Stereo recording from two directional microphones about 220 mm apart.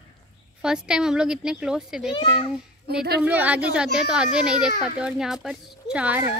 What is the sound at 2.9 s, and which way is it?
Speech, 45° right (ahead or behind).